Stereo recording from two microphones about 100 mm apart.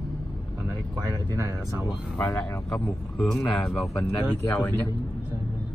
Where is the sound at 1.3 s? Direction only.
35° right (ahead or behind).